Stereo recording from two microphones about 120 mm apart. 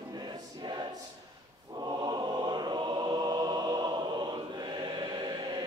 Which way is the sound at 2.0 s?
35° right (ahead or behind).